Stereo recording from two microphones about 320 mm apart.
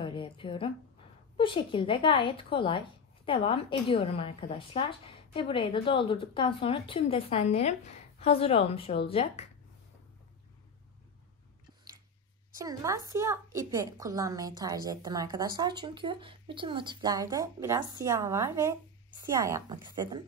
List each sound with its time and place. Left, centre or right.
0.0 s a sound: centre
1.3 s a woman's voice: centre
12.5 s a woman's voice: centre